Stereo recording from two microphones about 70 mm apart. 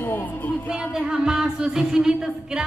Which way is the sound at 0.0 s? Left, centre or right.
Left.